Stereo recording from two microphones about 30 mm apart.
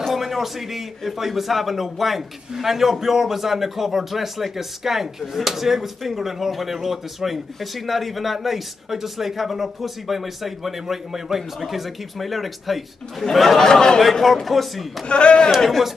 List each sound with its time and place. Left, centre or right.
0.1 s a man's voice: centre
13.6 s speech: centre
14.2 s speech: centre
15.0 s a man's voice: left